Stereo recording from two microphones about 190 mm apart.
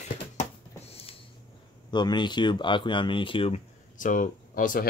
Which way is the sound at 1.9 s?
25° left (ahead or behind).